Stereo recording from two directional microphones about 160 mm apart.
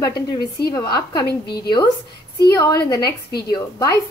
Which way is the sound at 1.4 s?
85° left.